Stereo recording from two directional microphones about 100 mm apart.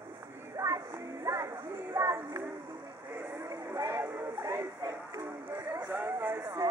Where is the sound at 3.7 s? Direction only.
35° right (ahead or behind).